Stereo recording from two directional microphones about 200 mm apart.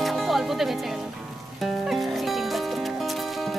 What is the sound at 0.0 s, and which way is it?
Music, centre (ahead or behind).